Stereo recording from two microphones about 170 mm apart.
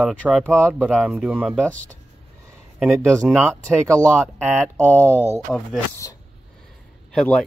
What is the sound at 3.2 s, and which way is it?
Speech, 10° right (ahead or behind).